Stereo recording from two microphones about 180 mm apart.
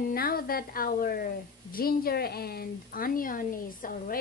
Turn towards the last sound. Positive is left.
turn(degrees=50)  # may be behind; listen again after turning